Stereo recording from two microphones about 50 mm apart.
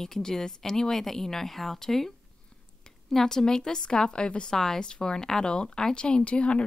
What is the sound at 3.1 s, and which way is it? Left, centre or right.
A woman's voice, centre.